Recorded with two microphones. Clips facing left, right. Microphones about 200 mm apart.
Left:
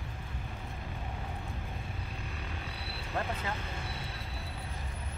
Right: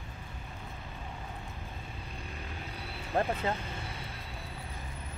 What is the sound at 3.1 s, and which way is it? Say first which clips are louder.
Speech: right 6 dB; 30° right (ahead or behind).